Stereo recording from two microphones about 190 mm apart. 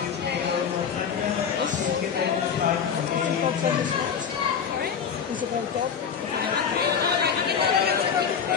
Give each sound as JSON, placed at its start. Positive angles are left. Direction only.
{"t": 7.4, "sound": "chatter", "side_deg": -55}